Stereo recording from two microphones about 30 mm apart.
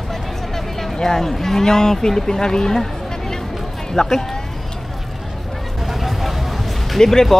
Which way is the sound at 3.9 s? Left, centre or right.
Centre.